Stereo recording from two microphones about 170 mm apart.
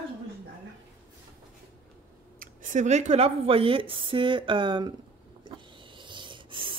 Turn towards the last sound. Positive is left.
turn(degrees=-30)  # may be behind; listen again after turning